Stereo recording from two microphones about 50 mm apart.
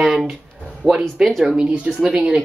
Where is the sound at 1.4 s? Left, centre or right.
Right.